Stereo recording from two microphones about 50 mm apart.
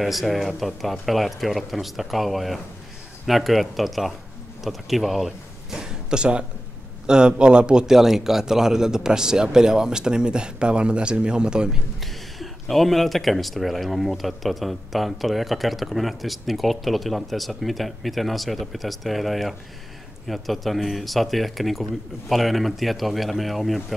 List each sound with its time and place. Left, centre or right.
0.0 s speech: centre
7.8 s speech: centre
12.0 s speech: centre